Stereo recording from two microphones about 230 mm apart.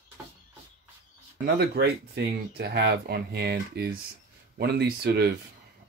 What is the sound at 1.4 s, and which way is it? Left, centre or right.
Speech, right.